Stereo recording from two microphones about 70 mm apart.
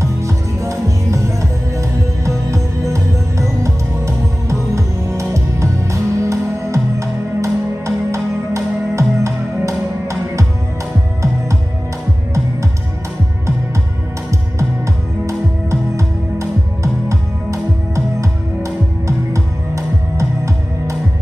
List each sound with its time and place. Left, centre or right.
0.0 s music: right
15.2 s music: right